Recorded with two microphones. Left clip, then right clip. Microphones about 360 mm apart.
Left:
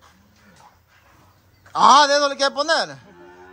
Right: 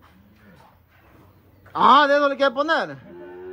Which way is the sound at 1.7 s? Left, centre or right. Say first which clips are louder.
Left 2 dB; centre.